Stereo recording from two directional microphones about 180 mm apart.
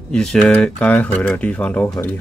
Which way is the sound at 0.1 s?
5° left (ahead or behind).